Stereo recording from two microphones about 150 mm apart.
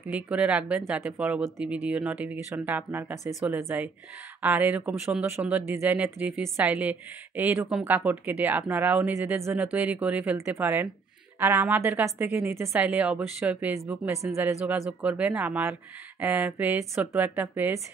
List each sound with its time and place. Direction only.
0.3 s a woman's voice: 10° right (ahead or behind)